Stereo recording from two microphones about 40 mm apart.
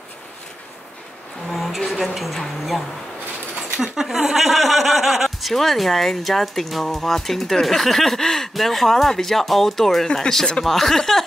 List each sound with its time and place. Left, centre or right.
1.5 s a sound: centre
1.9 s speech: centre
3.8 s speech: centre
10.6 s speech: centre